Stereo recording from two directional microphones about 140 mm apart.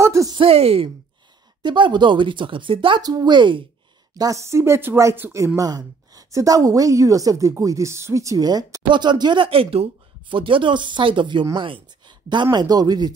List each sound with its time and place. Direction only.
0.0 s a sound: 20° right (ahead or behind)
0.3 s speech: 40° right (ahead or behind)
1.6 s a woman's voice: 35° right (ahead or behind)